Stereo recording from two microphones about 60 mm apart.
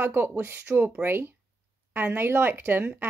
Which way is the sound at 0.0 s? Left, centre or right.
Right.